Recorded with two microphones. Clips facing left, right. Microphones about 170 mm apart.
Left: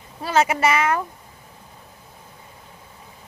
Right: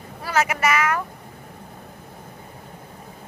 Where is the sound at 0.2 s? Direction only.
25° left (ahead or behind).